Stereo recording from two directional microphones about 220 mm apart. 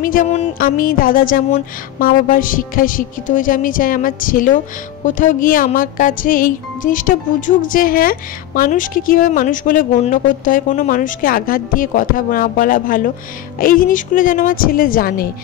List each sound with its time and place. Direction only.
0.0 s speech: 35° left (ahead or behind)